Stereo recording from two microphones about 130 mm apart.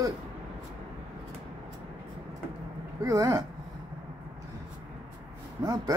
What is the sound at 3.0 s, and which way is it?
Speech, 30° right (ahead or behind).